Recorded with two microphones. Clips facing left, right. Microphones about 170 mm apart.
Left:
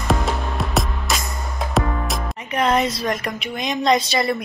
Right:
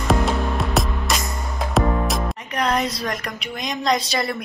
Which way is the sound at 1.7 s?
Centre (ahead or behind).